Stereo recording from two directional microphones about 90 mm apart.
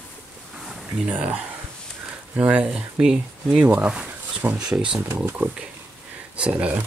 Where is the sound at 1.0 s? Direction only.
15° right (ahead or behind).